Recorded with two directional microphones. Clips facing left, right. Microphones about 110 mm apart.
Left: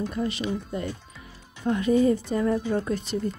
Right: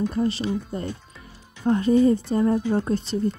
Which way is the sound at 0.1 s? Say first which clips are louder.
Right 4 dB; 35° right (ahead or behind).